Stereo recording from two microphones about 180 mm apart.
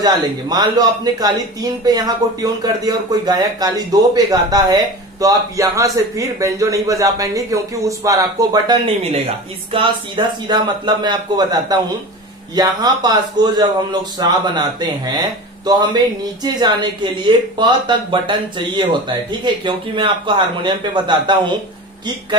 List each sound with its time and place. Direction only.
0.0 s speech: 20° right (ahead or behind)
8.8 s speech: 30° right (ahead or behind)